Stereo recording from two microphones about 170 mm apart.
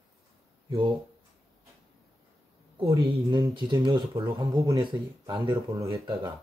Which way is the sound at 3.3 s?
25° right (ahead or behind).